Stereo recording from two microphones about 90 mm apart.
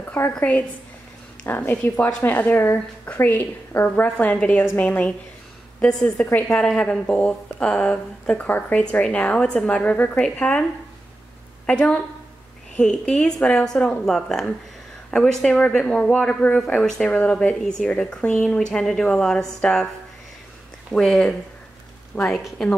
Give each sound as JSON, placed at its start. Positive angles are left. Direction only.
{"t": 0.0, "sound": "a woman's voice", "side_deg": 20}
{"t": 1.7, "sound": "a woman's voice", "side_deg": 15}
{"t": 11.6, "sound": "a woman's voice", "side_deg": 10}
{"t": 20.9, "sound": "a woman's voice", "side_deg": 5}